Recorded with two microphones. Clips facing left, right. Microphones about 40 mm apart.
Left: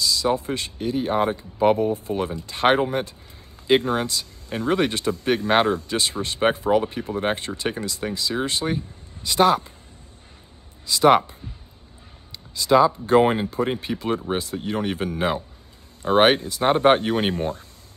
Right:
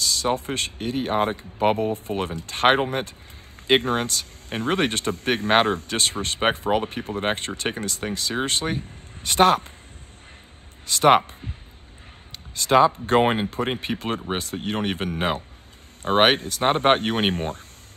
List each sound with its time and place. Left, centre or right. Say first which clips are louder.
0.2 s speech: left 1 dB; right
10.9 s speech: left 1 dB; right
12.5 s speech: even; right